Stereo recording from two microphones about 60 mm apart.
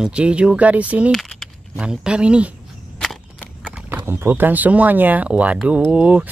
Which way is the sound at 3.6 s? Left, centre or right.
Right.